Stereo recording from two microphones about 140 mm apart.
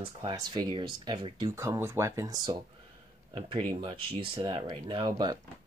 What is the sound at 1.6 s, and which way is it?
Speech, 20° right (ahead or behind).